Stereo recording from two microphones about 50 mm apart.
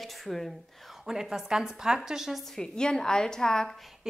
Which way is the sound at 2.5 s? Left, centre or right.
Centre.